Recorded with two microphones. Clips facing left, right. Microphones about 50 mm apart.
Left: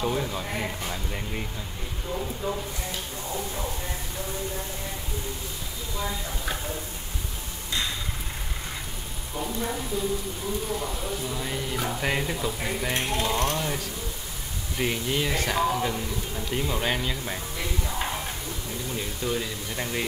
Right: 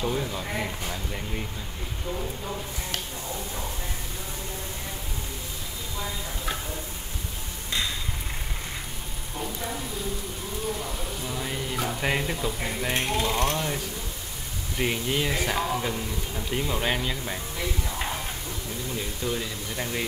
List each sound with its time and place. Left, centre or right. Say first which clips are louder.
0.0 s speech: left 1 dB; centre
11.2 s speech: even; centre
14.8 s speech: even; centre
18.9 s speech: left 1 dB; centre